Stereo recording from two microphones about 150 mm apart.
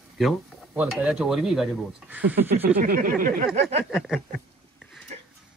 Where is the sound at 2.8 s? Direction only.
70° right (ahead or behind).